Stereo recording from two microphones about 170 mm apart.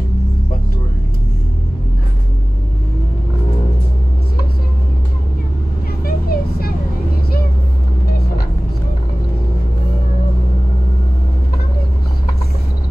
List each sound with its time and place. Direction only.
6.0 s vehicle: 65° left (ahead or behind)